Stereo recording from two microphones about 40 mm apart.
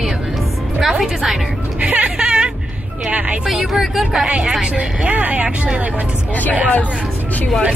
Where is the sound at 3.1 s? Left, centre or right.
Right.